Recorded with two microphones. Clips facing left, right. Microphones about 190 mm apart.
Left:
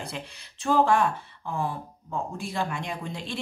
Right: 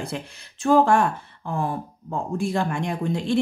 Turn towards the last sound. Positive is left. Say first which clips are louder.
# right 11 dB
turn(degrees=-50)  # may be behind; listen again after turning